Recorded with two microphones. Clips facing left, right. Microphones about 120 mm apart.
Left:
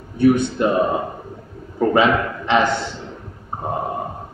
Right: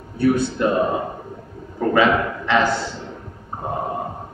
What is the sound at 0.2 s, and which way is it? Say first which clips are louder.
Speech: left 3 dB; 20° left (ahead or behind).